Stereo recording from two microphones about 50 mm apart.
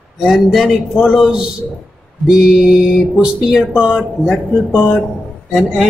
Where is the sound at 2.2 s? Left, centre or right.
Centre.